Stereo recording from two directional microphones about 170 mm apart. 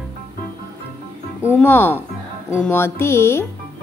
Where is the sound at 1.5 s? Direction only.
10° left (ahead or behind).